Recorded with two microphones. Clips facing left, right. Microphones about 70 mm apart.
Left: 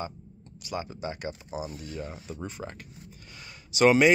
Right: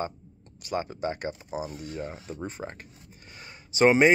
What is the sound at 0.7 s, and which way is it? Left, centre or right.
Speech, right.